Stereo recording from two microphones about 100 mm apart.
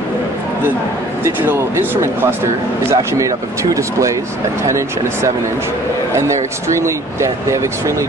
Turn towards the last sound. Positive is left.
turn(degrees=-30)  # may be behind; listen again after turning